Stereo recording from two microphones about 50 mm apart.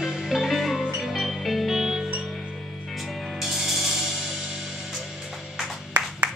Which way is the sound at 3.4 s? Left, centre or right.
Centre.